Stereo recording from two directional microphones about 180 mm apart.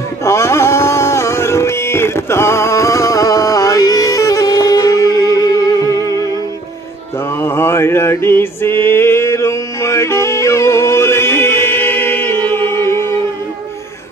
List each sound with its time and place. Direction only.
0.2 s music: 15° left (ahead or behind)
5.8 s music: 20° right (ahead or behind)
7.2 s mantra: 15° left (ahead or behind)